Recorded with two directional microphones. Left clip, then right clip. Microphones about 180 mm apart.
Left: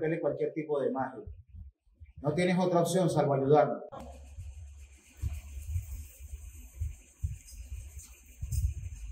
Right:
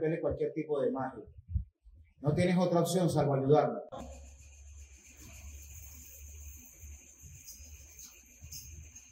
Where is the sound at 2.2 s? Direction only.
5° right (ahead or behind).